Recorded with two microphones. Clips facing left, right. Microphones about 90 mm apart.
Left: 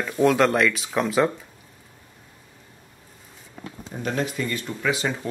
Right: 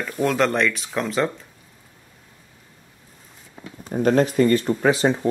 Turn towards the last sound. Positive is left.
turn(degrees=-40)  # may be behind; listen again after turning